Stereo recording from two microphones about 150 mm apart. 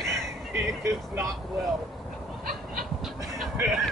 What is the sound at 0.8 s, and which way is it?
Speech, 20° right (ahead or behind).